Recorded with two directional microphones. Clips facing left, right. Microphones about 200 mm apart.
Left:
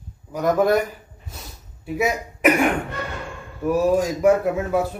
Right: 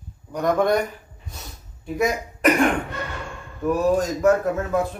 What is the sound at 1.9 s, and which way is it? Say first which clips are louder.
Speech: even; 5° left (ahead or behind).